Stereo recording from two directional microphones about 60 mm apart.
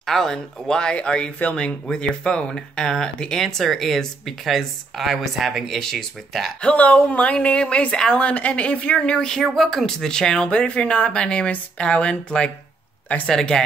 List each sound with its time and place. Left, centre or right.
0.0 s speech: centre
5.8 s speech: centre
6.6 s speech: left